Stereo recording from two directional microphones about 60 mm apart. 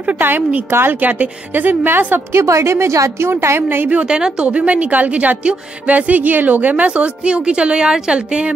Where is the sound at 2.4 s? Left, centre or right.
Right.